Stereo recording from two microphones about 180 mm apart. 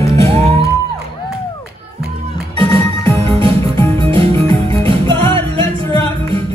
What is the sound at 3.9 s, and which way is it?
Music, 30° right (ahead or behind).